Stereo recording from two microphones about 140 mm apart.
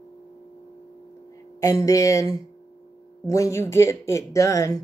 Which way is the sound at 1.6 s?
25° left (ahead or behind).